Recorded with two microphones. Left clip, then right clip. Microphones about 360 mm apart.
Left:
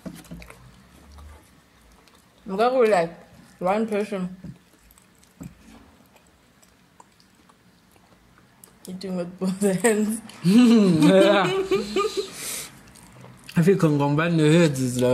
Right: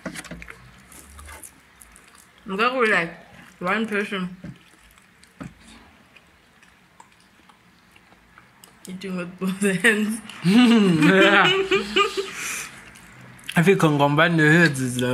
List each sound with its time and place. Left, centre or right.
0.0 s a sound: right
2.6 s a woman's voice: centre
8.8 s a woman's voice: centre